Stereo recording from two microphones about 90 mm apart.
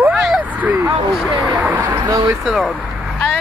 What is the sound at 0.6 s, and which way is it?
Speech, 20° right (ahead or behind).